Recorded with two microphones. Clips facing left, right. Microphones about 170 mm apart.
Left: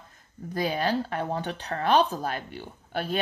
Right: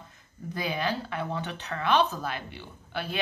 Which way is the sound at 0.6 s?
40° left (ahead or behind).